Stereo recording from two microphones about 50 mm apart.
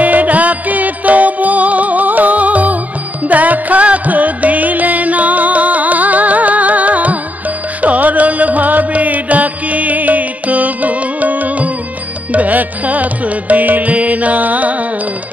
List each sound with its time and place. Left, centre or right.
0.0 s music: right